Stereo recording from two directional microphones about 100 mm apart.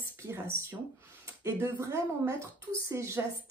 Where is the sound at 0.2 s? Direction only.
25° right (ahead or behind).